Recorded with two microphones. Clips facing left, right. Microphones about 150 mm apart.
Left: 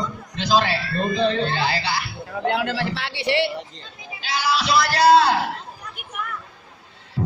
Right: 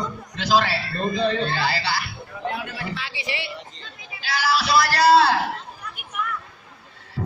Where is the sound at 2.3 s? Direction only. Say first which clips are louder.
Left 8 dB; 75° left (ahead or behind).